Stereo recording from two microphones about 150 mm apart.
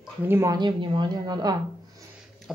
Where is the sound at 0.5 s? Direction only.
30° right (ahead or behind).